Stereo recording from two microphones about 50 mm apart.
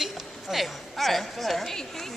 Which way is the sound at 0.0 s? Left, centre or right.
Centre.